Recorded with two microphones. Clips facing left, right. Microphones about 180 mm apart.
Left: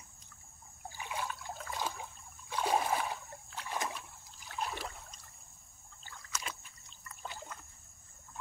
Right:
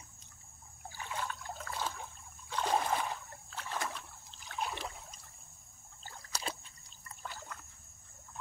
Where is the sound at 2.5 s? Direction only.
10° left (ahead or behind).